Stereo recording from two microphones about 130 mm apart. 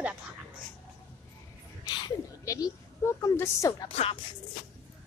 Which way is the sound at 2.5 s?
25° left (ahead or behind).